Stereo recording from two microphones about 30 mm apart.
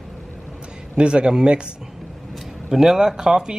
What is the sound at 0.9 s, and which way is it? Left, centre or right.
Speech, right.